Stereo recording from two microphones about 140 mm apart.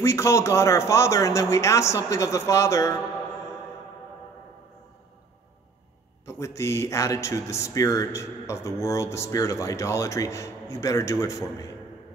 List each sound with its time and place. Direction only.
0.0 s speech: 20° left (ahead or behind)
6.2 s speech: 20° left (ahead or behind)